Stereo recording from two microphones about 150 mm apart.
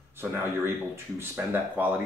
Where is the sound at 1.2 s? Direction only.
15° right (ahead or behind).